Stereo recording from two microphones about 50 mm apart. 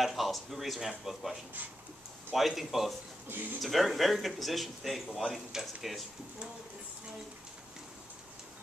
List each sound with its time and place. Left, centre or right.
0.0 s speech: centre